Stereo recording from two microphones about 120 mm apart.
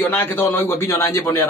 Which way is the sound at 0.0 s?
20° left (ahead or behind).